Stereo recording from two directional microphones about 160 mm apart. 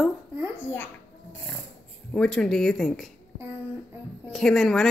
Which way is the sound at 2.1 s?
5° left (ahead or behind).